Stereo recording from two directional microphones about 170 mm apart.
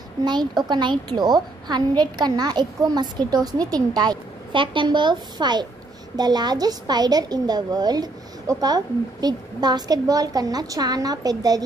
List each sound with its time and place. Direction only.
0.2 s a woman's voice: 25° right (ahead or behind)